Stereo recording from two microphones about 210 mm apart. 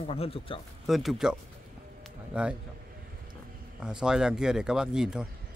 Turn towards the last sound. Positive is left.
turn(degrees=-5)  # may be behind; listen again after turning